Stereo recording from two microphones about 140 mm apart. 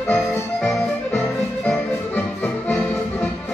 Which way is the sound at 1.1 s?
10° left (ahead or behind).